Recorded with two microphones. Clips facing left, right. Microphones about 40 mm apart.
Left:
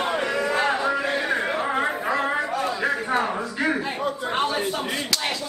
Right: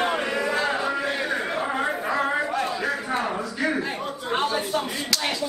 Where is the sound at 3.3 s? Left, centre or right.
Centre.